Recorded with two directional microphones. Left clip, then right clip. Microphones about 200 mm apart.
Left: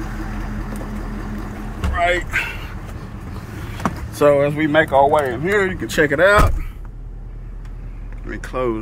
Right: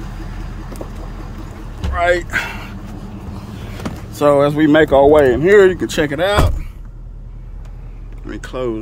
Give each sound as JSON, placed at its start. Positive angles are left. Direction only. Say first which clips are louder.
{"t": 2.0, "sound": "speech", "louder": "right 3 dB", "side_deg": -20}
{"t": 4.2, "sound": "speech", "louder": "right 2 dB", "side_deg": -20}
{"t": 4.6, "sound": "speech", "louder": "right 4 dB", "side_deg": -45}
{"t": 5.8, "sound": "speech", "louder": "left 2 dB", "side_deg": -15}
{"t": 8.3, "sound": "speech", "louder": "even", "side_deg": -10}